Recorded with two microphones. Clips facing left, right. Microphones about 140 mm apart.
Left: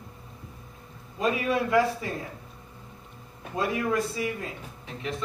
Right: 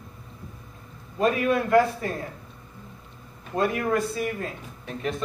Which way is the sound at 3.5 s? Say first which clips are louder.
Right 3 dB; 55° right (ahead or behind).